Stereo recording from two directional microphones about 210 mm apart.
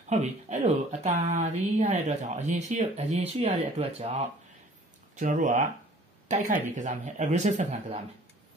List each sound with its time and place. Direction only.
0.1 s speech: 35° right (ahead or behind)